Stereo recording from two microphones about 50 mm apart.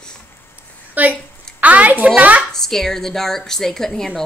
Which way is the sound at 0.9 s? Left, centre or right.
Right.